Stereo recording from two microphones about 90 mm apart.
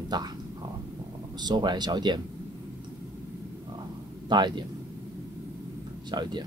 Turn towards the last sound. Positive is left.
turn(degrees=-55)  # may be behind; listen again after turning